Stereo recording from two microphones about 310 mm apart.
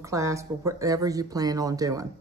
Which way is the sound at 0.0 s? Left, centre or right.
Centre.